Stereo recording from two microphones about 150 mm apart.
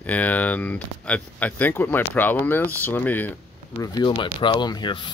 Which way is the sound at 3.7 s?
30° left (ahead or behind).